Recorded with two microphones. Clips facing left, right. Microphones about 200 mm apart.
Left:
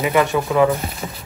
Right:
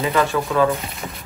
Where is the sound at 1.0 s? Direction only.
15° left (ahead or behind).